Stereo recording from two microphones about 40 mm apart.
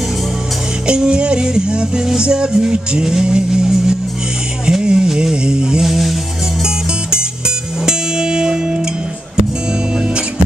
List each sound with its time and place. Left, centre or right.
0.8 s music: right
5.9 s music: centre
6.6 s music: right
9.9 s music: right